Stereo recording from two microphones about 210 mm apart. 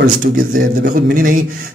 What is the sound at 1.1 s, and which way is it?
Speech, 40° right (ahead or behind).